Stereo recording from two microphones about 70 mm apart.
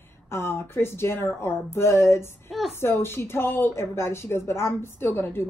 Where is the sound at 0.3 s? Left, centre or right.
Left.